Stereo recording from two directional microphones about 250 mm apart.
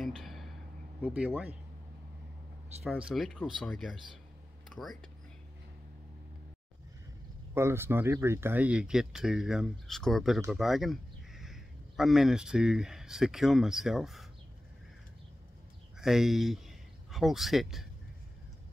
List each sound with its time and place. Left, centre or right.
0.0 s a sound: centre
1.0 s speech: centre
2.8 s speech: centre
7.5 s speech: centre
16.0 s speech: centre